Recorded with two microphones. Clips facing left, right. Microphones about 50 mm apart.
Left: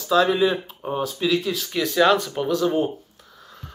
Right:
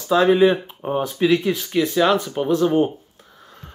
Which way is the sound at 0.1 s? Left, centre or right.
Right.